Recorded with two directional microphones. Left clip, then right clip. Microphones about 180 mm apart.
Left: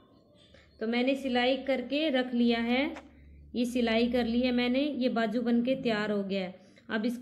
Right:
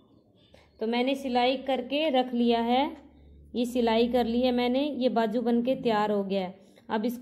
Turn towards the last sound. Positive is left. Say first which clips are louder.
# right 3 dB
turn(degrees=-15)  # may be behind; listen again after turning